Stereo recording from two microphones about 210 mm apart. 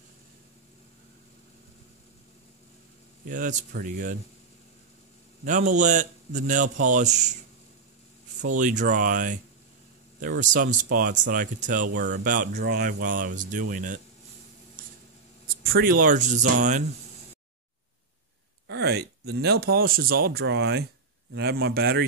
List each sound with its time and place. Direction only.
3.3 s speech: 40° right (ahead or behind)
5.4 s speech: 35° right (ahead or behind)
8.5 s speech: 35° right (ahead or behind)
15.4 s speech: 45° right (ahead or behind)
18.7 s speech: 50° right (ahead or behind)